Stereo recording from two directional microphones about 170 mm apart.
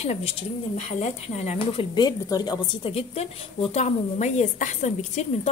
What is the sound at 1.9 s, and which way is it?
A woman's voice, 25° left (ahead or behind).